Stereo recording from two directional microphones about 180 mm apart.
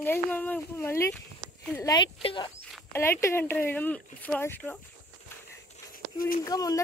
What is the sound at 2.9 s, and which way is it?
Speech, 15° left (ahead or behind).